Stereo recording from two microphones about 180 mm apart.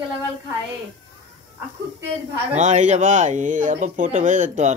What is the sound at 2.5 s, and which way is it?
Speech, 40° right (ahead or behind).